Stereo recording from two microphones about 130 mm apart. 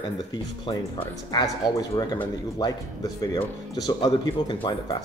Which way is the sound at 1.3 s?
30° left (ahead or behind).